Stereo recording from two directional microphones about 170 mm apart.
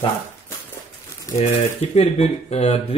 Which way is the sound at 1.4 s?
35° left (ahead or behind).